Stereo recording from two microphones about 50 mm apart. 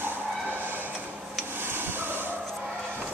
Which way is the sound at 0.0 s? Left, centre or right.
Right.